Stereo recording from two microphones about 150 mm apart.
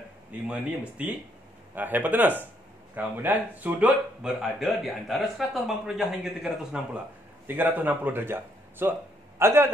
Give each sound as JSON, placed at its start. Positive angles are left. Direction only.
{"t": 0.3, "sound": "speech", "side_deg": -10}